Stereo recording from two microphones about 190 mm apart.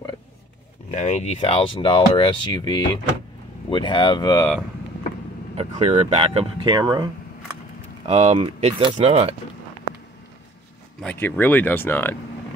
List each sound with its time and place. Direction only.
0.9 s speech: 40° left (ahead or behind); by 4.5 s 15° left (ahead or behind)
5.6 s speech: 35° right (ahead or behind)
8.0 s speech: 35° right (ahead or behind)
11.0 s speech: 10° left (ahead or behind)